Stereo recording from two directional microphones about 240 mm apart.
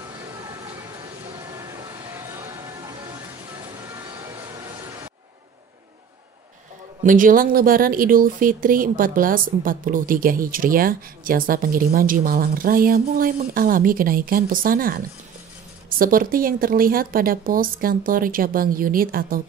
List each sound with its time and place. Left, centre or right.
2.3 s music: centre
7.0 s speech: right